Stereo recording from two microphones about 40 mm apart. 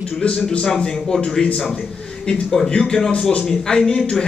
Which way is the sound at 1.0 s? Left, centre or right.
Centre.